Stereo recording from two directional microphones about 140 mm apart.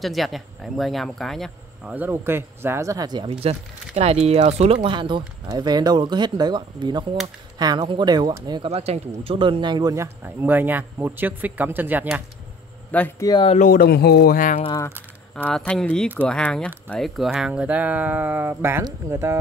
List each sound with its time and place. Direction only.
0.0 s speech: centre (ahead or behind)
1.9 s speech: 15° right (ahead or behind); by 3.3 s 30° right (ahead or behind)
3.4 s speech: 50° right (ahead or behind); by 8.6 s 30° right (ahead or behind)
8.6 s speech: 50° right (ahead or behind); by 12.2 s 10° right (ahead or behind)
13.2 s speech: 30° left (ahead or behind)
13.7 s speech: 90° left
15.3 s speech: 10° left (ahead or behind); by 19.3 s 20° right (ahead or behind)